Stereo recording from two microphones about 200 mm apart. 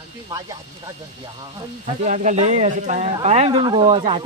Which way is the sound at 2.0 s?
35° right (ahead or behind).